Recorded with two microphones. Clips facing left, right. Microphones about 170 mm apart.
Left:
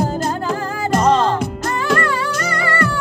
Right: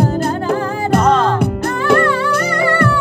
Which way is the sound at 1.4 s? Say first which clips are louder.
Right 4 dB; 60° right (ahead or behind).